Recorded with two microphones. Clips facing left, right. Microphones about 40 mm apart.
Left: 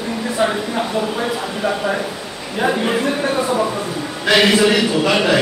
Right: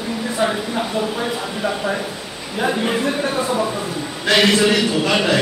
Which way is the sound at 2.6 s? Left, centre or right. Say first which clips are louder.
Left 2 dB; centre.